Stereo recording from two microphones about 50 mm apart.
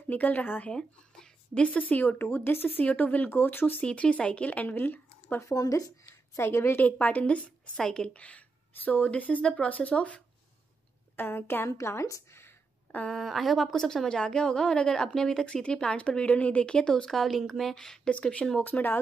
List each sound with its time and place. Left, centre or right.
0.1 s speech: left
0.7 s speech: centre; by 2.1 s left
2.1 s speech: left
2.8 s speech: left
3.3 s speech: left
3.8 s a woman's voice: left
4.7 s speech: left
6.4 s a woman's voice: left
6.8 s a woman's voice: left
8.7 s speech: left
11.1 s a woman's voice: left
13.1 s a woman's voice: centre
13.7 s a woman's voice: centre
18.6 s speech: left